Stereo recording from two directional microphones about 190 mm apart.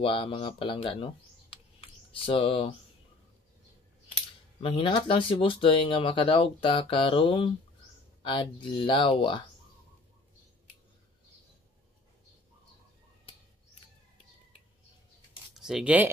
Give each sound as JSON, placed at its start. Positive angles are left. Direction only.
{"t": 0.0, "sound": "speech", "side_deg": 25}
{"t": 4.6, "sound": "speech", "side_deg": 30}
{"t": 15.5, "sound": "speech", "side_deg": -5}